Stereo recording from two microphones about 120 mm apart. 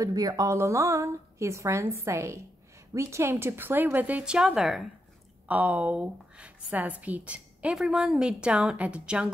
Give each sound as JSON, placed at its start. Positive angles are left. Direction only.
{"t": 0.0, "sound": "a woman's voice", "side_deg": -30}
{"t": 5.5, "sound": "a woman's voice", "side_deg": -15}